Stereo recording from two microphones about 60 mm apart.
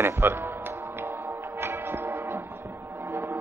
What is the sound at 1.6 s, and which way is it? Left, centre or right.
Music, right.